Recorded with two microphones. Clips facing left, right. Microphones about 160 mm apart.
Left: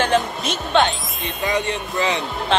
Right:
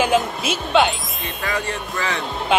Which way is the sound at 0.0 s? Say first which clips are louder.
Right 1 dB; 5° right (ahead or behind).